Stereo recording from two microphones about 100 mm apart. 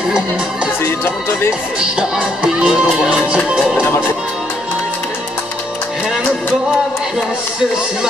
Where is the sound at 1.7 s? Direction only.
10° right (ahead or behind).